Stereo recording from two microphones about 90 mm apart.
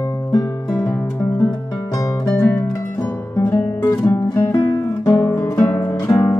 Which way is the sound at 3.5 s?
35° left (ahead or behind).